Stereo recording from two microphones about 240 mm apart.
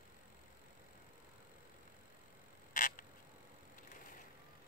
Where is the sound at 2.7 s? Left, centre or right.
Left.